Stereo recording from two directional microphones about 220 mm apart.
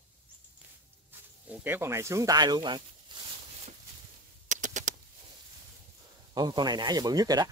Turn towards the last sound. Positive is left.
turn(degrees=-15)  # may be behind; listen again after turning